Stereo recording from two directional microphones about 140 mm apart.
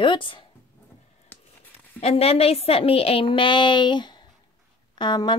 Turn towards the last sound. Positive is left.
turn(degrees=35)  # may be behind; listen again after turning